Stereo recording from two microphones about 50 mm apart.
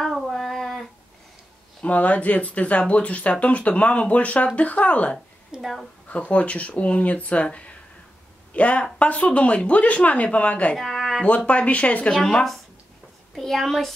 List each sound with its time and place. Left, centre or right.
0.0 s a sound: centre
1.9 s speech: left
5.6 s a child's voice: centre
6.0 s speech: left
10.8 s a sound: centre
11.2 s speech: left
12.1 s speech: centre
13.3 s a child's voice: centre